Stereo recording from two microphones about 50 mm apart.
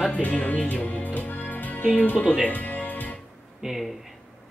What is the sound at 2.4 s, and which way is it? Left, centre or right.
Music, left.